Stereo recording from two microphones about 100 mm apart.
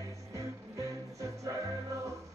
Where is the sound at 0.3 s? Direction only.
35° right (ahead or behind).